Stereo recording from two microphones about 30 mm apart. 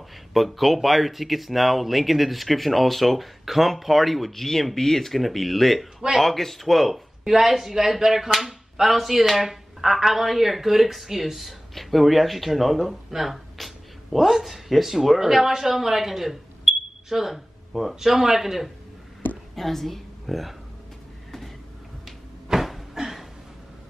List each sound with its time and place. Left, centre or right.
0.3 s speech: centre
7.2 s speech: centre
19.5 s a woman's voice: centre
22.5 s a sound: right